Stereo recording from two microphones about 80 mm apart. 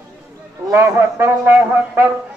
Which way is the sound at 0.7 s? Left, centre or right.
Right.